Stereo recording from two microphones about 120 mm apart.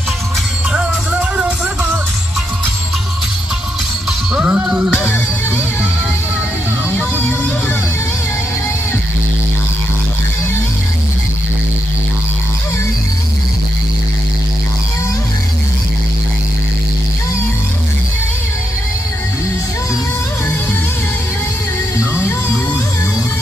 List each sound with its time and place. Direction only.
1.3 s music: 10° right (ahead or behind)
4.3 s music: 10° right (ahead or behind)
4.9 s music: 20° left (ahead or behind)
6.9 s music: 15° left (ahead or behind)
21.9 s music: 20° left (ahead or behind)